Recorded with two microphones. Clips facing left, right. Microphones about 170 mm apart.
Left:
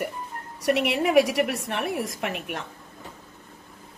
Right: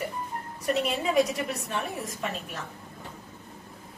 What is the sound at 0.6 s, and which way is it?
A woman's voice, 80° left.